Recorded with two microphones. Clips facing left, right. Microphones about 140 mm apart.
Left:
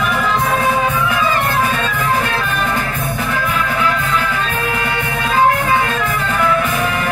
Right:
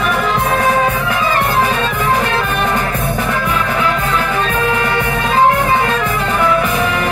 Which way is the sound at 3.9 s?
40° right (ahead or behind).